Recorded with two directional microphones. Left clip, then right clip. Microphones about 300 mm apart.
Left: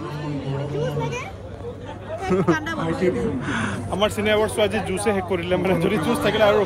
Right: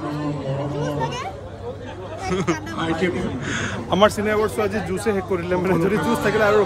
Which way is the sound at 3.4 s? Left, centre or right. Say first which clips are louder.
Even; centre.